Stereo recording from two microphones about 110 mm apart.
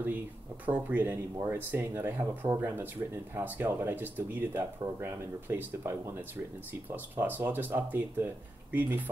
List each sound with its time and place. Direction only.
0.7 s speech: 15° right (ahead or behind)